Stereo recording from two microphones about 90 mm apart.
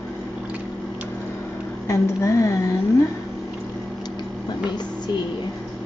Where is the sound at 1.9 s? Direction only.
30° left (ahead or behind).